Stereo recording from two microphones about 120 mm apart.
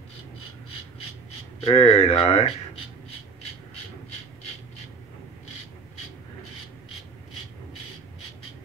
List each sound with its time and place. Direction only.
1.6 s speech: 50° left (ahead or behind)